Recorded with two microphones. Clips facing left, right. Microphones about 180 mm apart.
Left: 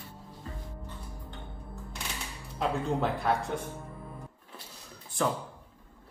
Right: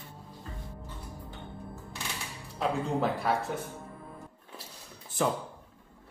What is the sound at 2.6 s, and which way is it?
Speech, centre (ahead or behind).